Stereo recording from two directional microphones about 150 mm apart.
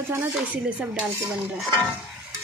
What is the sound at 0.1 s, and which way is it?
A child's voice, 10° right (ahead or behind).